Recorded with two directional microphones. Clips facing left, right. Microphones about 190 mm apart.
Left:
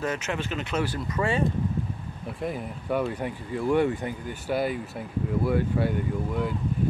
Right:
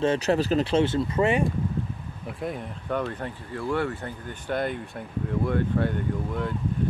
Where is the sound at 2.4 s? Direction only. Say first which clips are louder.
Left 1 dB; 5° left (ahead or behind).